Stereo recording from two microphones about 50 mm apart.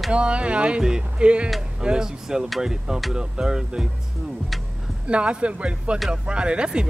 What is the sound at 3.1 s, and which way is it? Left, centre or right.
Speech, centre.